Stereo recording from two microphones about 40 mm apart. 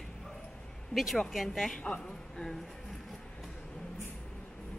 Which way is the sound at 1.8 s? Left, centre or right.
Left.